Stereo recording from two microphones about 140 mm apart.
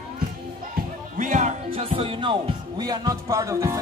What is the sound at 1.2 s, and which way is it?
Speech, 60° right (ahead or behind).